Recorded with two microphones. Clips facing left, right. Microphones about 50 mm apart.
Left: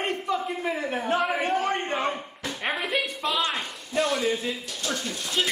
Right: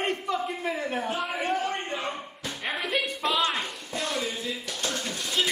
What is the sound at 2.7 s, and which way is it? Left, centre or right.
Music, centre.